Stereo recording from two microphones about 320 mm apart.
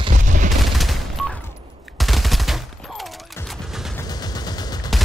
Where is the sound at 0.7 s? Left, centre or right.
Centre.